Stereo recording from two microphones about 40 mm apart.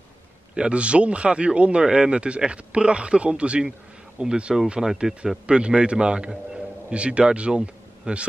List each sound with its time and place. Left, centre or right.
0.6 s a man's voice: right